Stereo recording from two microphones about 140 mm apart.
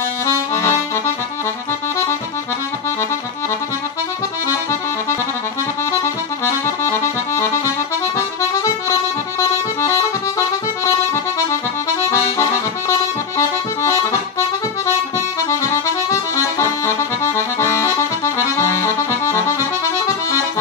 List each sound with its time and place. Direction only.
0.3 s accordion: 20° left (ahead or behind)
6.4 s music: 20° left (ahead or behind)
8.4 s accordion: 20° left (ahead or behind)
12.0 s accordion: 20° left (ahead or behind)
14.9 s accordion: 20° left (ahead or behind)